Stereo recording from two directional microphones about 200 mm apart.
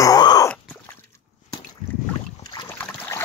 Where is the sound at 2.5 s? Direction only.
15° left (ahead or behind).